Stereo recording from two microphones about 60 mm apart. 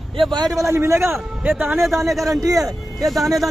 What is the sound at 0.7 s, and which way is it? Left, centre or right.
Speech, right.